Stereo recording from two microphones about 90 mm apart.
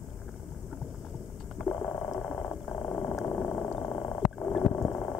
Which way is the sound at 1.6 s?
Centre (ahead or behind).